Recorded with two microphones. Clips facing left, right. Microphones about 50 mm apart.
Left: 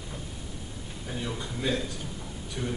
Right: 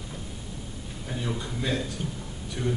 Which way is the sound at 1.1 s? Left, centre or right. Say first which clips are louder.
Right 2 dB; centre.